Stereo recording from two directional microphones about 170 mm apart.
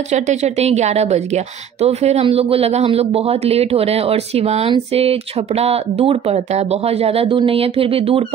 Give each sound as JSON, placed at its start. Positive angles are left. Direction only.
{"t": 0.1, "sound": "a woman's voice", "side_deg": -40}